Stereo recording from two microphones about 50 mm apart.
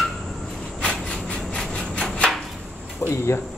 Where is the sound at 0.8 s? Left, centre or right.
Centre.